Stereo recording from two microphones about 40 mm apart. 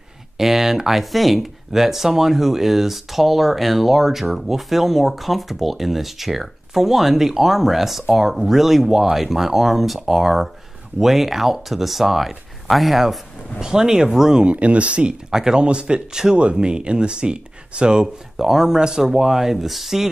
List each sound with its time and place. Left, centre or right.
0.4 s speech: centre
13.6 s speech: centre
14.4 s speech: right
15.3 s speech: centre
15.6 s speech: right
18.0 s speech: centre